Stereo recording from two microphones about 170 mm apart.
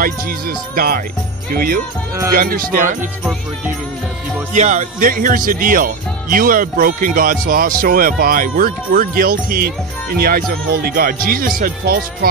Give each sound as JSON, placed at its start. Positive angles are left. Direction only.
{"t": 0.0, "sound": "speech", "side_deg": -60}
{"t": 4.6, "sound": "speech", "side_deg": -45}